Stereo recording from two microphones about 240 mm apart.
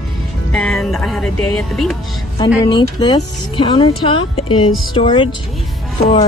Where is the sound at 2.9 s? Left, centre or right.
Centre.